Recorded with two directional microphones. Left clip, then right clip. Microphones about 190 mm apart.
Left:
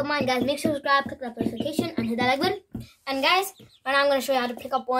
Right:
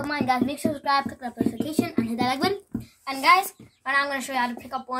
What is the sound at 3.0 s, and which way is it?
A child's voice, 35° left (ahead or behind).